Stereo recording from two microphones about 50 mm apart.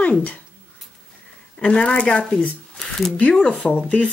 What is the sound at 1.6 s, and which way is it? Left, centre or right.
Speech, left.